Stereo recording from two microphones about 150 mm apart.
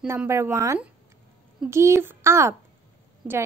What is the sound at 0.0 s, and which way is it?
A woman's voice, 15° right (ahead or behind).